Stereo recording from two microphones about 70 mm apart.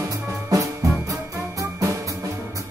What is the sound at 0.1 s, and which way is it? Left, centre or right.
Music, right.